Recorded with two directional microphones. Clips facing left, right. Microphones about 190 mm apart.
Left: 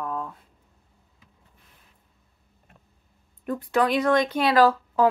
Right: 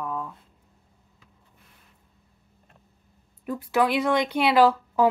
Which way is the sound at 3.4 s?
5° right (ahead or behind).